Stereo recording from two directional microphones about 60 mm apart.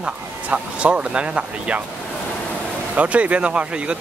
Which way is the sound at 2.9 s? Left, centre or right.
Right.